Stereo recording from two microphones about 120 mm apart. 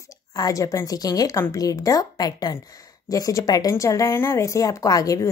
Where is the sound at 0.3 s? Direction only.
30° left (ahead or behind).